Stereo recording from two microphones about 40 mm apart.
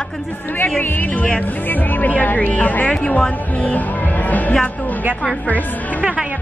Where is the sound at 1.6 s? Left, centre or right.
Left.